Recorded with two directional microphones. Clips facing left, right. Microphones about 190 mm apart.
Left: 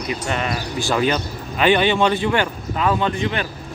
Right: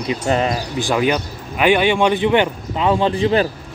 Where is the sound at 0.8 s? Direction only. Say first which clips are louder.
Right 2 dB; 10° right (ahead or behind); by 3.5 s 30° right (ahead or behind).